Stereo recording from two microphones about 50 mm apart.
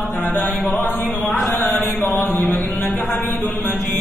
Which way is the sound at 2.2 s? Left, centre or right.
Left.